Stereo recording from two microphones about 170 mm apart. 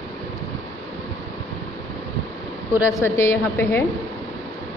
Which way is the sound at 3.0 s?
15° left (ahead or behind).